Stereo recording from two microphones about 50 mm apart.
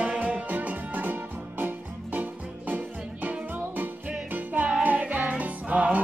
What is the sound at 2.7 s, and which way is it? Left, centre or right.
Music, right.